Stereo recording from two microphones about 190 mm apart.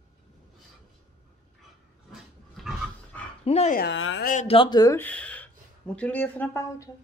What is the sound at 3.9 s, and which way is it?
Speech, 85° left.